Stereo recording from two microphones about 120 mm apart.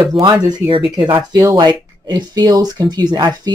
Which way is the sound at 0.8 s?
45° right (ahead or behind).